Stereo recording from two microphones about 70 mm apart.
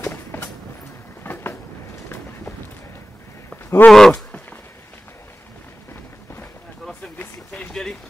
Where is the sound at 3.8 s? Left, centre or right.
Centre.